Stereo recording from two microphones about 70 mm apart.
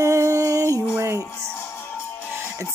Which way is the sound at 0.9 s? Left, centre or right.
Right.